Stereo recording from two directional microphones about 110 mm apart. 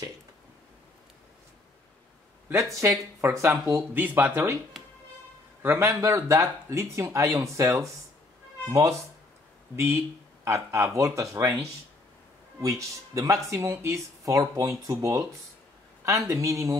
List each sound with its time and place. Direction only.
2.5 s speech: 30° right (ahead or behind)
5.6 s speech: 20° right (ahead or behind)
10.4 s speech: 25° right (ahead or behind)
12.5 s speech: 30° right (ahead or behind)